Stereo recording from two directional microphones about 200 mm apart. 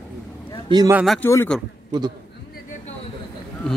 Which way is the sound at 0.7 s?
20° right (ahead or behind).